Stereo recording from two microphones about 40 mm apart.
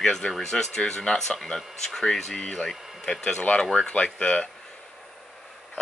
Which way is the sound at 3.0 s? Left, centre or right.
Centre.